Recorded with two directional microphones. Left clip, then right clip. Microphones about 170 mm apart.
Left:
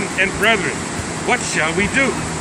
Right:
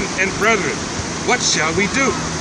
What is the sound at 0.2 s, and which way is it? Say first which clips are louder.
Speech: left 1 dB; 30° left (ahead or behind).